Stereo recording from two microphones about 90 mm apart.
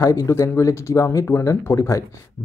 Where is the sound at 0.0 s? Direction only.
40° left (ahead or behind).